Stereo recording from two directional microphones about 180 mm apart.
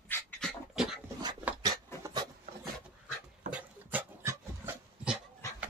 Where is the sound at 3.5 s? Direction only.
10° right (ahead or behind).